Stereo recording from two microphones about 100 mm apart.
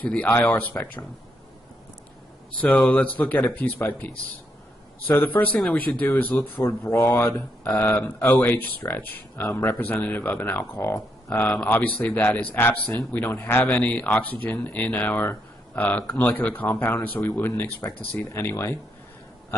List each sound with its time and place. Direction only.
0.0 s speech: 15° left (ahead or behind)
2.8 s speech: 15° left (ahead or behind)
7.0 s speech: 35° left (ahead or behind)
7.9 s a man's voice: 15° left (ahead or behind)
11.4 s a man's voice: 15° left (ahead or behind)